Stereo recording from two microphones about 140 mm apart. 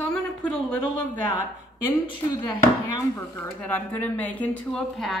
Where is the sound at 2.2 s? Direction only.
30° left (ahead or behind).